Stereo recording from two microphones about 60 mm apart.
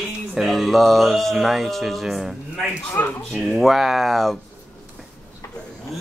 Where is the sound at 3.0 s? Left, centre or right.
Left.